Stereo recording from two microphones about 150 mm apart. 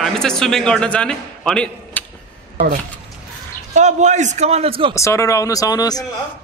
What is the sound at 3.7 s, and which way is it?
A man's voice, 50° right (ahead or behind).